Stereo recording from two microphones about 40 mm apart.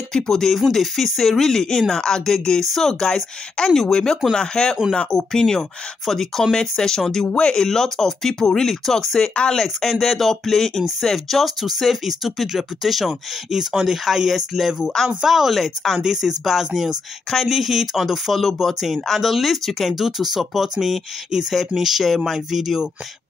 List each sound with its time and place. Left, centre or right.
0.1 s speech: centre
6.5 s speech: centre
9.2 s speech: left
9.6 s speech: centre